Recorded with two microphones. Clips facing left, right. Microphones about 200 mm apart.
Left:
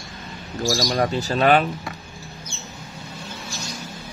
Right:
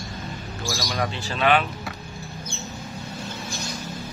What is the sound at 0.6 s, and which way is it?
Speech, 35° left (ahead or behind).